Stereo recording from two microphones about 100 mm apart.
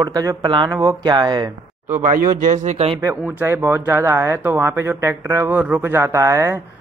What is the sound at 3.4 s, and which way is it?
Speech, 25° right (ahead or behind).